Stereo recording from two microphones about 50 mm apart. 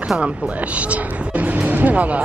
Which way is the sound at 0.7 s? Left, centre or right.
Right.